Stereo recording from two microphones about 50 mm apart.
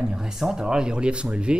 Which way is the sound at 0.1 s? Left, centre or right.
Centre.